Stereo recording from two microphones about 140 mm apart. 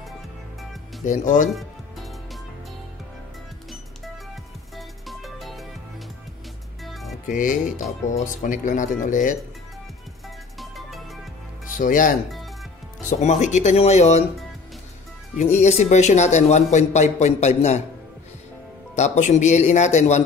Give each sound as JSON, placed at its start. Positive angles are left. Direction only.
{"t": 1.0, "sound": "speech", "side_deg": 65}
{"t": 1.5, "sound": "music", "side_deg": 0}
{"t": 4.7, "sound": "music", "side_deg": 0}
{"t": 6.8, "sound": "music", "side_deg": 0}
{"t": 7.2, "sound": "speech", "side_deg": 70}
{"t": 10.6, "sound": "music", "side_deg": 0}
{"t": 11.8, "sound": "speech", "side_deg": 70}
{"t": 13.2, "sound": "speech", "side_deg": 60}
{"t": 15.4, "sound": "speech", "side_deg": 55}
{"t": 18.9, "sound": "speech", "side_deg": 55}